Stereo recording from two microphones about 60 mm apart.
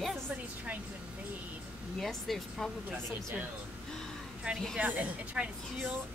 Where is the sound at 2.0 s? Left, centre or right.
Centre.